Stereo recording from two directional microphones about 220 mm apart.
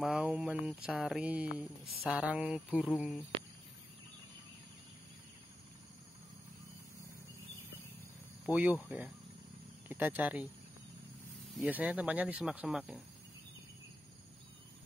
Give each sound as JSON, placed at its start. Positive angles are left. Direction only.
{"t": 0.0, "sound": "speech", "side_deg": -5}
{"t": 8.5, "sound": "speech", "side_deg": -5}
{"t": 11.5, "sound": "speech", "side_deg": -5}